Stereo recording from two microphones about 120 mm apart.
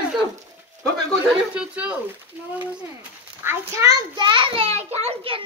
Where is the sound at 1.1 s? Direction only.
5° right (ahead or behind).